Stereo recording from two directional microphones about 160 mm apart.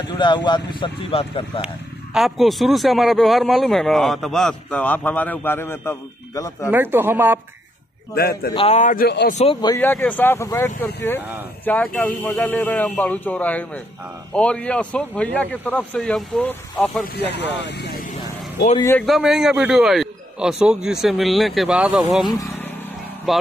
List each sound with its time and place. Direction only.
0.2 s speech: 30° left (ahead or behind)
2.1 s speech: centre (ahead or behind); by 6.7 s 20° left (ahead or behind)
6.7 s speech: 15° right (ahead or behind)
8.1 s a man's voice: 75° left (ahead or behind)
8.5 s a man's voice: 45° left (ahead or behind); by 9.3 s 80° left
9.8 s speech: 10° left (ahead or behind)
17.3 s speech: 90° left
18.9 s speech: centre (ahead or behind)